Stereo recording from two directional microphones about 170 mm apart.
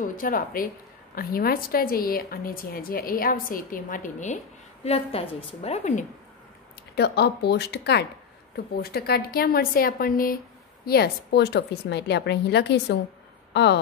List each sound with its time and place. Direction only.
0.0 s a woman's voice: 55° left (ahead or behind)
4.8 s a woman's voice: 35° left (ahead or behind)
7.0 s speech: 75° left (ahead or behind)
8.8 s a woman's voice: 65° left (ahead or behind)
10.9 s a woman's voice: 75° left (ahead or behind)
13.5 s a sound: 85° left